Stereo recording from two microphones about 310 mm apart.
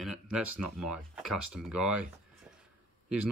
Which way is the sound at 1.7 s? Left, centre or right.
Right.